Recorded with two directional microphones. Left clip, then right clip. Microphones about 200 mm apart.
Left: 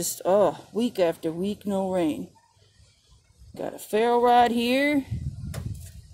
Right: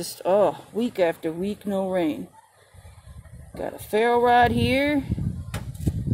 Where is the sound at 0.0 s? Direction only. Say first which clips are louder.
Right 1 dB; 35° left (ahead or behind).